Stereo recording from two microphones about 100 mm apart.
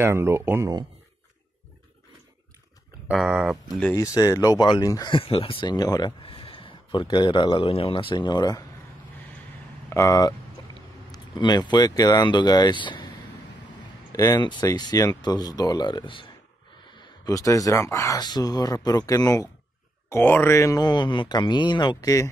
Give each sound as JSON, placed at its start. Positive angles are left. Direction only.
{"t": 0.0, "sound": "speech", "side_deg": -25}
{"t": 3.3, "sound": "speech", "side_deg": -10}
{"t": 3.9, "sound": "speech", "side_deg": 30}
{"t": 5.1, "sound": "speech", "side_deg": 65}
{"t": 6.2, "sound": "a man's voice", "side_deg": 65}
{"t": 9.8, "sound": "speech", "side_deg": 30}
{"t": 14.1, "sound": "speech", "side_deg": 35}
{"t": 14.4, "sound": "speech", "side_deg": 50}
{"t": 14.7, "sound": "speech", "side_deg": 40}
{"t": 17.0, "sound": "speech", "side_deg": 40}
{"t": 18.2, "sound": "speech", "side_deg": 45}
{"t": 20.1, "sound": "speech", "side_deg": 20}
{"t": 20.8, "sound": "speech", "side_deg": 50}